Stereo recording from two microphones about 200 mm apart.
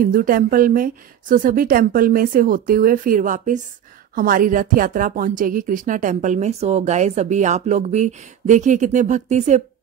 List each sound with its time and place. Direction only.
0.0 s a woman's voice: 45° right (ahead or behind)